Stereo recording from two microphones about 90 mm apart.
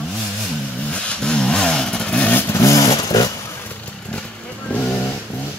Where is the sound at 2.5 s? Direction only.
35° left (ahead or behind).